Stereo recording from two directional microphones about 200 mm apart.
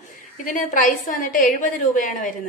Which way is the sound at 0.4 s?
40° left (ahead or behind).